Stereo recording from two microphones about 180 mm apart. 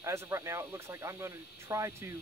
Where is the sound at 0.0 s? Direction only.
15° right (ahead or behind).